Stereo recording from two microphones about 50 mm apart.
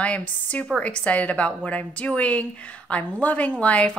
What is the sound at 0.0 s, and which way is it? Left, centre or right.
A woman's voice, left.